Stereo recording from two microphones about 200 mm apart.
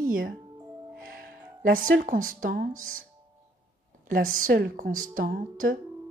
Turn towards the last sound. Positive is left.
turn(degrees=-45)  # may be behind; listen again after turning